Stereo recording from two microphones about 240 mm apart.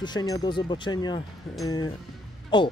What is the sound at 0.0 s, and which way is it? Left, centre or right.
Speech, centre.